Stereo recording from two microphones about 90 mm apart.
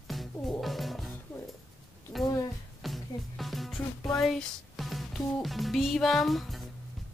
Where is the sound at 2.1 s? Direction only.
Centre (ahead or behind).